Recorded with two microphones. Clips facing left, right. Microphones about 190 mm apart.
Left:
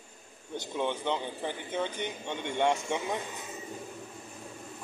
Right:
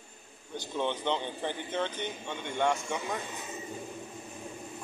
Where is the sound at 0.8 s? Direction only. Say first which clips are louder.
Even; 10° left (ahead or behind).